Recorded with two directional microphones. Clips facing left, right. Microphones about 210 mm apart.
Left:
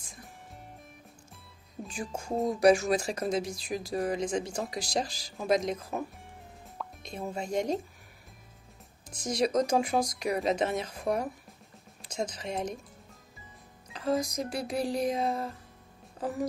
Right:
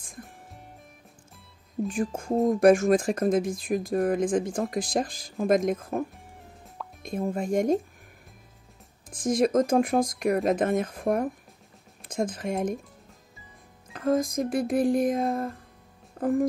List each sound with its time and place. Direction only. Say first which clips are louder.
1.9 s speech: right 6 dB; 50° right (ahead or behind)
9.1 s speech: right 5 dB; 50° right (ahead or behind)
12.0 s speech: right 6 dB; 50° right (ahead or behind)
13.9 s speech: right 5 dB; 50° right (ahead or behind)